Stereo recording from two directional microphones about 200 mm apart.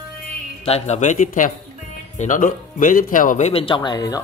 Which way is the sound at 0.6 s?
35° left (ahead or behind).